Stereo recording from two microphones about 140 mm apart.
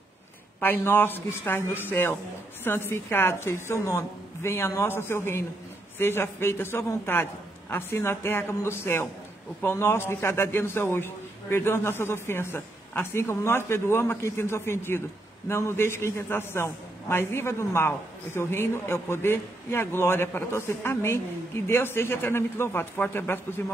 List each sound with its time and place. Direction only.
0.6 s a man's voice: 15° left (ahead or behind)